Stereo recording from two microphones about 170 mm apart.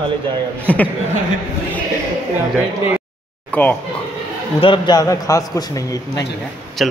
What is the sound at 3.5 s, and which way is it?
Speech, 10° left (ahead or behind).